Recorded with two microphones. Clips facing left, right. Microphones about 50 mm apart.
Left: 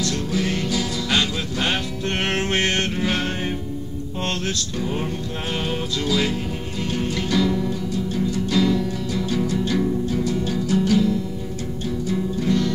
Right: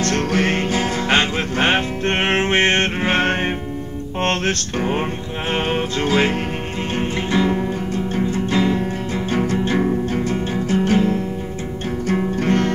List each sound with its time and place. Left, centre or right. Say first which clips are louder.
0.0 s music: right 5 dB; right